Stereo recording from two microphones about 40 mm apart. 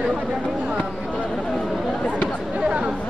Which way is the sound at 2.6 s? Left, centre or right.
Right.